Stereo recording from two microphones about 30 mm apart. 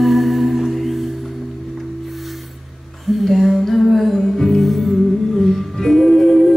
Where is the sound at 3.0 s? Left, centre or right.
Centre.